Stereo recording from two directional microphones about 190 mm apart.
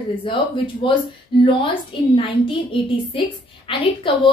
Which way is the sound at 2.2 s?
30° left (ahead or behind).